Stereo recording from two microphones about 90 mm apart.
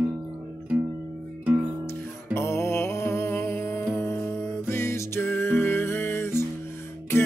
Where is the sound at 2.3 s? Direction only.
30° left (ahead or behind).